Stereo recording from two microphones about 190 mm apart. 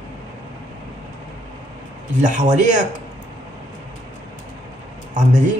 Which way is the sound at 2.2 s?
40° right (ahead or behind).